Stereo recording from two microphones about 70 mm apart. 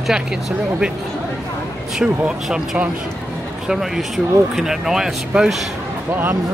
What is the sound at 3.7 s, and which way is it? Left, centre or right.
Speech, centre.